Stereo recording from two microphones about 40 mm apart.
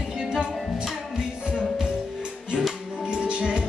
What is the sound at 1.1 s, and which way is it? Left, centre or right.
Music, centre.